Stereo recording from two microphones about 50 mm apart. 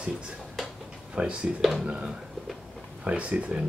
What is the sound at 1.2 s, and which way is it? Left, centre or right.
Speech, right.